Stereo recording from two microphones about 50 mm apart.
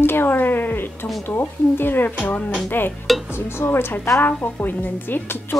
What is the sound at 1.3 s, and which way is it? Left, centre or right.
A woman's voice, left.